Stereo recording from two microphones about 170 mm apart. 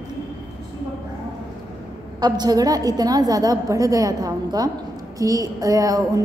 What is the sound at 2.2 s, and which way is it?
A woman's voice, 25° right (ahead or behind).